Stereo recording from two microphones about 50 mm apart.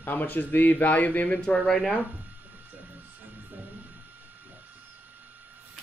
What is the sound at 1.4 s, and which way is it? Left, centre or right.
Speech, centre.